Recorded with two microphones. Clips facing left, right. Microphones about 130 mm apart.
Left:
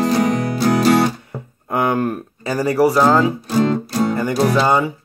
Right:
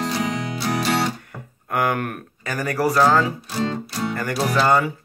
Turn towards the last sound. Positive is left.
turn(degrees=20)  # may be behind; listen again after turning